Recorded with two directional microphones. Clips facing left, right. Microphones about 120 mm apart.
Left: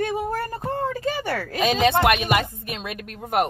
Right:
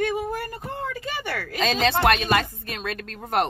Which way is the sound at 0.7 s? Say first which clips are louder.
Left 7 dB; 35° left (ahead or behind).